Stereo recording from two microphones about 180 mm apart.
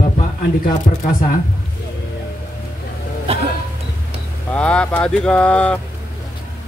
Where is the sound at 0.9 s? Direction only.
45° left (ahead or behind).